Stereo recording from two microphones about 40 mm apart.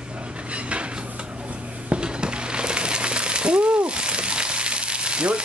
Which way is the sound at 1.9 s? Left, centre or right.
Right.